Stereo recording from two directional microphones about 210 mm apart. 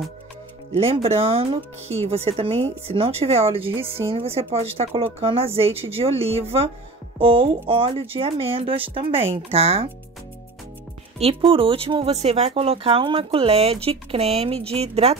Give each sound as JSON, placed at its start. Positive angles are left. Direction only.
{"t": 0.7, "sound": "speech", "side_deg": -30}
{"t": 11.1, "sound": "speech", "side_deg": -25}